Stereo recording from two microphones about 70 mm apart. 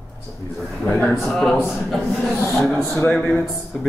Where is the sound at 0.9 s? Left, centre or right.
Centre.